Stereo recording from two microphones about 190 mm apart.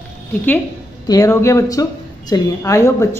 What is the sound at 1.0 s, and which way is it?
A woman's voice, 15° left (ahead or behind).